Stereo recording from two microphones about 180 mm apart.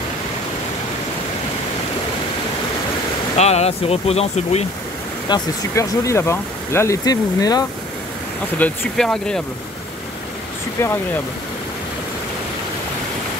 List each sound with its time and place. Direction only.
3.3 s speech: 35° left (ahead or behind)
5.3 s speech: 15° left (ahead or behind)
8.5 s speech: 5° left (ahead or behind)
10.8 s speech: 15° left (ahead or behind)